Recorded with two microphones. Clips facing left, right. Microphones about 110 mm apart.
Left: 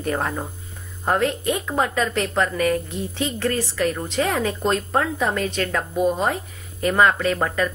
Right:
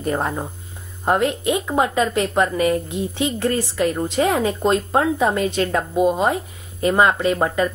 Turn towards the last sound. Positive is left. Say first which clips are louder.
# right 3 dB
turn(degrees=-25)  # may be behind; listen again after turning